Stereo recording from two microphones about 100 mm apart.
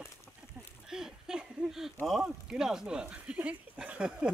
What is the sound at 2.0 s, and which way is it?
Speech, 5° right (ahead or behind).